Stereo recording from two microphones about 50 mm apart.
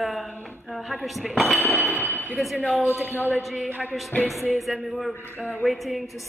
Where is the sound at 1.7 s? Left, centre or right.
Left.